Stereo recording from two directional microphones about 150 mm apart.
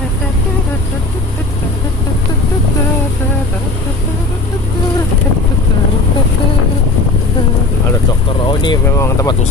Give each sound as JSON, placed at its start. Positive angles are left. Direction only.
{"t": 8.5, "sound": "vehicle", "side_deg": 30}
{"t": 8.9, "sound": "vehicle", "side_deg": 20}